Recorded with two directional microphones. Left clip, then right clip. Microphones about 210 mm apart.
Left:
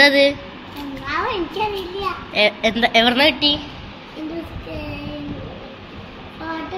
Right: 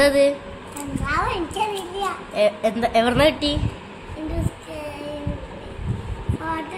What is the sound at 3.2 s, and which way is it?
Speech, 15° right (ahead or behind).